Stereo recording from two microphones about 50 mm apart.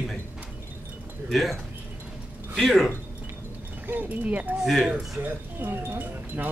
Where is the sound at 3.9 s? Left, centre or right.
Right.